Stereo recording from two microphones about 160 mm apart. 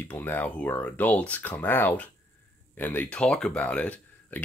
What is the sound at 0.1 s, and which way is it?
Speech, 10° left (ahead or behind).